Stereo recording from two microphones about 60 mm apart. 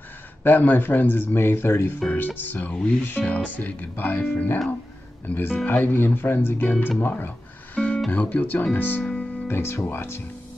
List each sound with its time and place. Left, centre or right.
0.4 s speech: left
7.0 s music: left
8.1 s speech: left
9.5 s speech: left